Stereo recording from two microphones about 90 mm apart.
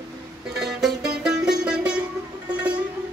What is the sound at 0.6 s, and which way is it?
Music, centre (ahead or behind).